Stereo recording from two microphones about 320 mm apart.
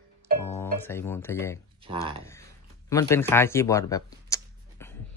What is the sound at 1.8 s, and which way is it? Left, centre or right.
Speech, centre.